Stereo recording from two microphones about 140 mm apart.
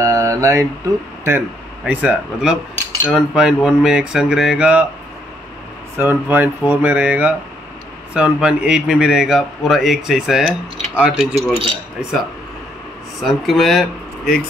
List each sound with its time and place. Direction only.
0.0 s mantra: 20° right (ahead or behind)
1.9 s a man's voice: 10° right (ahead or behind)
5.9 s a man's voice: 15° right (ahead or behind); by 14.4 s centre (ahead or behind)